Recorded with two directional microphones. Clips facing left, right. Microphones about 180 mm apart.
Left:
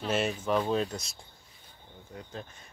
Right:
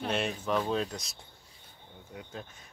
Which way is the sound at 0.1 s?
Centre (ahead or behind).